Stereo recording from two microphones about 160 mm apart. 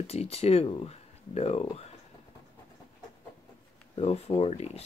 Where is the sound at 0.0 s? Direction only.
40° left (ahead or behind).